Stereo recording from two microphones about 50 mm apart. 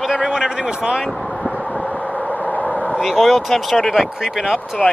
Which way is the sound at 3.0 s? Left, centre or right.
Centre.